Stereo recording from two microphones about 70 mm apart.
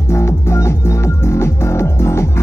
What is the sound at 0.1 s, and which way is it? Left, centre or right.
Music, left.